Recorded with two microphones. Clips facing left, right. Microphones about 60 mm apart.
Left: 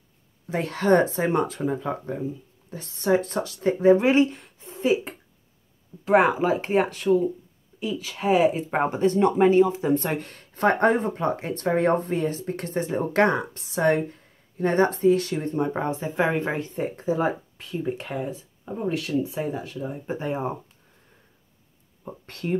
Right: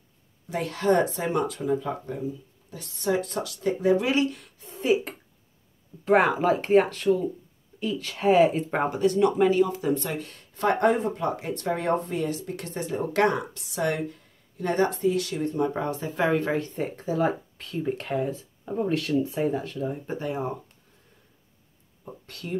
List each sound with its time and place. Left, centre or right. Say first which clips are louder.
0.5 s speech: left 3 dB; left
6.1 s speech: left 2 dB; centre
8.9 s speech: left 1 dB; left
10.0 s speech: left 4 dB; left; by 20.2 s centre
20.2 s speech: left 3 dB; left
22.2 s speech: left 6 dB; left